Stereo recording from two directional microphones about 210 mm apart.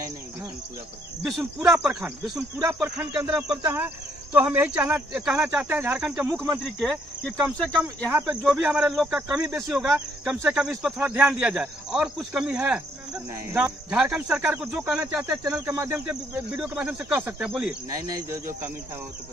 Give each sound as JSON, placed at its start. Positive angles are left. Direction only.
{"t": 1.3, "sound": "speech", "side_deg": -5}
{"t": 2.6, "sound": "cricket", "side_deg": -15}
{"t": 6.6, "sound": "speech", "side_deg": 0}
{"t": 13.7, "sound": "cricket", "side_deg": -5}